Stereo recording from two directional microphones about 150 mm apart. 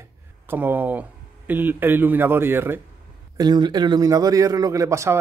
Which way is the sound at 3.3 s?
30° right (ahead or behind).